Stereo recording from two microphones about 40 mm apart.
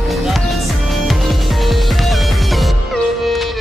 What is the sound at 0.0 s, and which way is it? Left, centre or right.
Music, centre.